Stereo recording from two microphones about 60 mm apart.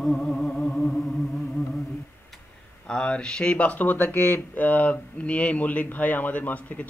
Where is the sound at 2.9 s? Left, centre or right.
Centre.